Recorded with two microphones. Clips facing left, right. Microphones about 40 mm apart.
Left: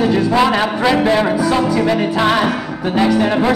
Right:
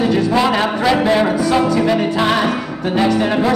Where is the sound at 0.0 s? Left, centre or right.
Centre.